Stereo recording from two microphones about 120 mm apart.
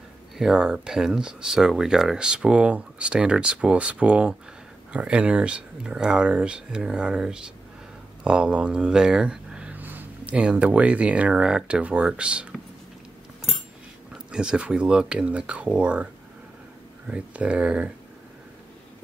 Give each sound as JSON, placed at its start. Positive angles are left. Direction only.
{"t": 0.4, "sound": "speech", "side_deg": -5}
{"t": 14.3, "sound": "speech", "side_deg": -5}
{"t": 17.1, "sound": "speech", "side_deg": -10}